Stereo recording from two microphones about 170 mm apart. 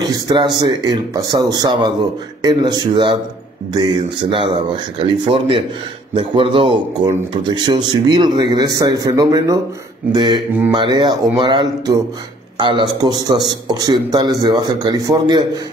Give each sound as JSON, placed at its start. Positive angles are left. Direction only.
{"t": 0.0, "sound": "a man's voice", "side_deg": -25}